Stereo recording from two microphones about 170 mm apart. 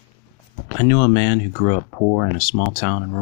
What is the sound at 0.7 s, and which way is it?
Speech, 25° left (ahead or behind).